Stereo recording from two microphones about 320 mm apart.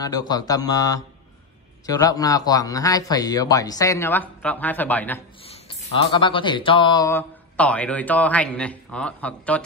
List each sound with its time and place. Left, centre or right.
0.0 s speech: centre
5.7 s speech: centre